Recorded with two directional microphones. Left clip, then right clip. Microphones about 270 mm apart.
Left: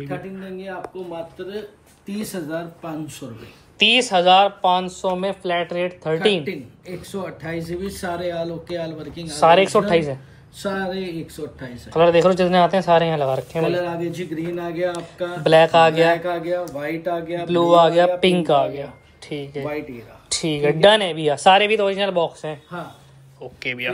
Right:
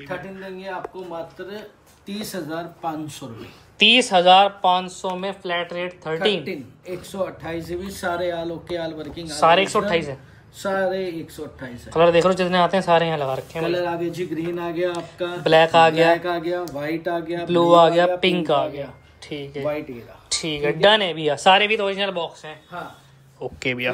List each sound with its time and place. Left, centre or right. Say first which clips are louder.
2.0 s speech: left 1 dB; centre
6.4 s a man's voice: left 1 dB; right
7.4 s speech: left 1 dB; centre
8.2 s a man's voice: even; right
9.2 s speech: left 2 dB; centre
10.7 s speech: right 4 dB; centre
11.9 s speech: left 1 dB; centre
23.4 s speech: right 5 dB; centre